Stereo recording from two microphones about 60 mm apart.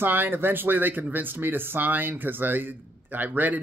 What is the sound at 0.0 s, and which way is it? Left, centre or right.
Speech, right.